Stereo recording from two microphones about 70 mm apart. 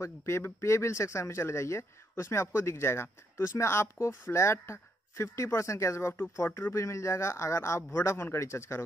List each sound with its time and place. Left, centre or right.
0.0 s speech: left